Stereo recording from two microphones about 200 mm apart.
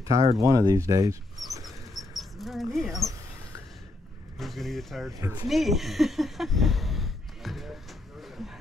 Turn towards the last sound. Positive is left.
turn(degrees=0)  # may be behind; listen again after turning